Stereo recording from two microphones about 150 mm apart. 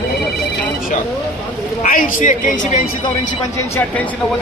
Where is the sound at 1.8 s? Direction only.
65° left (ahead or behind); by 2.9 s 50° left (ahead or behind).